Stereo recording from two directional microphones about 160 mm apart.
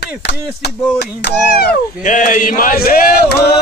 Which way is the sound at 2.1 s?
50° left (ahead or behind).